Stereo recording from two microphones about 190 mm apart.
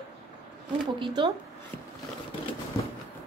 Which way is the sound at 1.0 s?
25° right (ahead or behind).